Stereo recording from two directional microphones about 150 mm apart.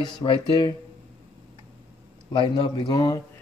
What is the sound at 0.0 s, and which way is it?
Speech, 35° left (ahead or behind).